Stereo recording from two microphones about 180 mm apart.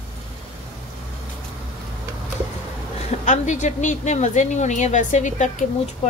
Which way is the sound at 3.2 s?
40° left (ahead or behind).